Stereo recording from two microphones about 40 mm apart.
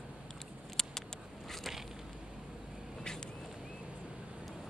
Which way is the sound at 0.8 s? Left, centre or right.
Centre.